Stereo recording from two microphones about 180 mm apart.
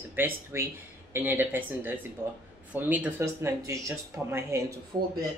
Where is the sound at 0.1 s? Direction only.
15° right (ahead or behind).